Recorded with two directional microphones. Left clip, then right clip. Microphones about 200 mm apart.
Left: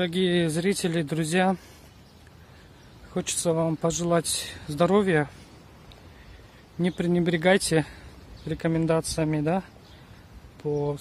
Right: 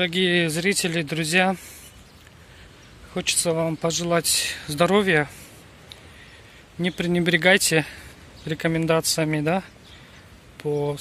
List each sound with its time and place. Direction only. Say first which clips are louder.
0.0 s speech: right 4 dB; 15° left (ahead or behind)
3.2 s speech: right 3 dB; 15° left (ahead or behind)
6.8 s speech: right 2 dB; 15° left (ahead or behind)